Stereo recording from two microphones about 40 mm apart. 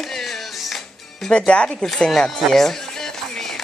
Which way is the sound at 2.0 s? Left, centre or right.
Centre.